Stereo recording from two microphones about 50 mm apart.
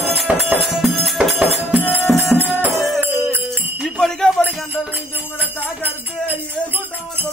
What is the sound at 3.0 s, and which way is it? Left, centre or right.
Jingle bell, right.